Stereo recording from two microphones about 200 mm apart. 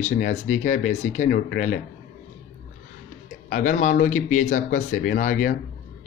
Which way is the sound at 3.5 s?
40° left (ahead or behind).